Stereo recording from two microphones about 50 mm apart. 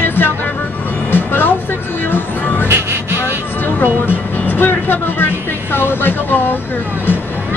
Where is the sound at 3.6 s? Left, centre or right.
Left.